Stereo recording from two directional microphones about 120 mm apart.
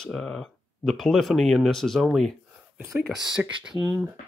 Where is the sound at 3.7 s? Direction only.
25° right (ahead or behind).